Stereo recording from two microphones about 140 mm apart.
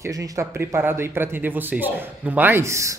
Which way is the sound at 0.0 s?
20° right (ahead or behind).